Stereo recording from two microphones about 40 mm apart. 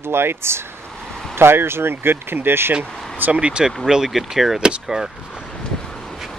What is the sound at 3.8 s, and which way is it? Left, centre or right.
Speech, centre.